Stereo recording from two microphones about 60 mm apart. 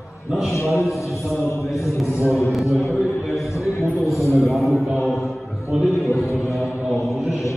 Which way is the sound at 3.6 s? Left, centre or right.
Left.